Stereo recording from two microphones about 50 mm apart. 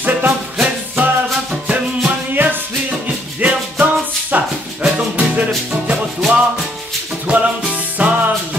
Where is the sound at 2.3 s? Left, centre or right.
Right.